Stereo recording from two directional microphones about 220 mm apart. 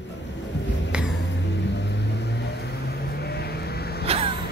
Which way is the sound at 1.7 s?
50° left (ahead or behind).